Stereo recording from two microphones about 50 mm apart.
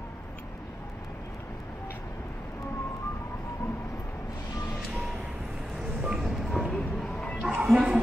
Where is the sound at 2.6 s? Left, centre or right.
Left.